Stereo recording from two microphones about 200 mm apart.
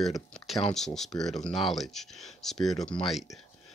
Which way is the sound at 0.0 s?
Centre (ahead or behind).